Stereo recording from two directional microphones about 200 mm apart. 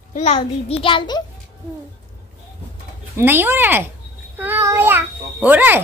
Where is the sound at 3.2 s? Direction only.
10° right (ahead or behind).